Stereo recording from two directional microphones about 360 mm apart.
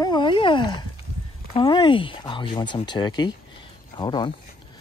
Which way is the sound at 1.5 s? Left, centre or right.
Centre.